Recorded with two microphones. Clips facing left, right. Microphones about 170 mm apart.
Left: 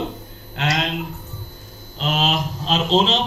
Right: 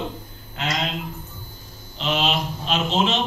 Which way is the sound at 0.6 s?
70° left (ahead or behind).